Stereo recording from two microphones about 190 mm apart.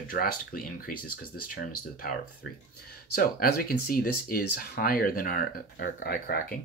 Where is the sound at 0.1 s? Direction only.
50° left (ahead or behind).